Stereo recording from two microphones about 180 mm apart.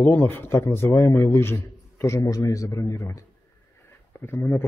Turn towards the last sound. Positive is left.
turn(degrees=10)  # may be behind; listen again after turning